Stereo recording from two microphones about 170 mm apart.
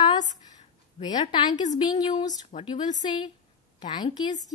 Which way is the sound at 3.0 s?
25° left (ahead or behind).